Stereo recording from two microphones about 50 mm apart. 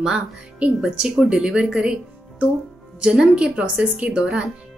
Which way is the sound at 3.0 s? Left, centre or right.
Centre.